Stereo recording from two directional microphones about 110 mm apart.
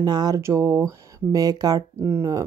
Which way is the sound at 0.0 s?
40° right (ahead or behind).